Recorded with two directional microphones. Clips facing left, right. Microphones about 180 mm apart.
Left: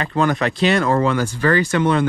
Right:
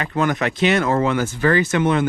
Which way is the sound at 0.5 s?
20° right (ahead or behind).